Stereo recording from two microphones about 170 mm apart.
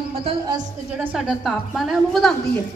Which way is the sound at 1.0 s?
5° right (ahead or behind).